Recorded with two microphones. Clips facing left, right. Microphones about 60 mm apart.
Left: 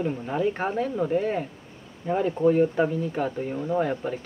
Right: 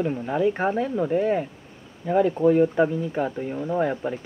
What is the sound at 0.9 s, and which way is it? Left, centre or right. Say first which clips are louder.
Speech: right 2 dB; centre.